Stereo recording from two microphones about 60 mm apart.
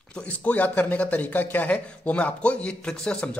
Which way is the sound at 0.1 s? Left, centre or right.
Left.